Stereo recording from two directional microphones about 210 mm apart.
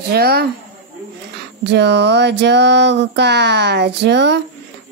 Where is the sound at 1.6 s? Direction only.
55° right (ahead or behind).